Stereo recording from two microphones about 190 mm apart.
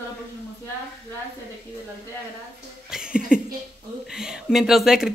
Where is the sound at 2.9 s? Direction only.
5° right (ahead or behind).